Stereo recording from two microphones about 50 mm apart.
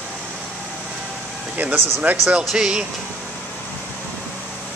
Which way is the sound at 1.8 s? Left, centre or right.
Right.